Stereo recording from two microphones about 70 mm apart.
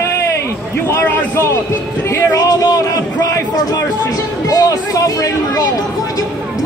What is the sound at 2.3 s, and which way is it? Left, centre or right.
Speech, left.